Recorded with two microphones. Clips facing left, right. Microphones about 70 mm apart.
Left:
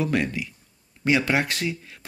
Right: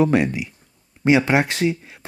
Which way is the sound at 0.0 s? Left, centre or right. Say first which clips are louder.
Right 7 dB; right.